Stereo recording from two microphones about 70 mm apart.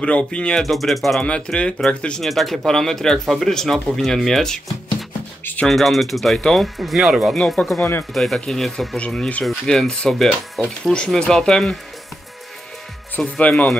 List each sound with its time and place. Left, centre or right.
0.0 s speech: centre
0.7 s speech: centre
1.2 s speech: centre
2.2 s speech: centre
8.9 s speech: centre
13.2 s speech: centre